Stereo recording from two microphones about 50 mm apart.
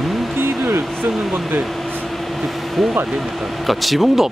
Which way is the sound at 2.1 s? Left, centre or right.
Centre.